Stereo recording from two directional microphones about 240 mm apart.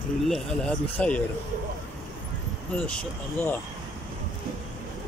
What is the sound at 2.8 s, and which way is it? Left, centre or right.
Speech, centre.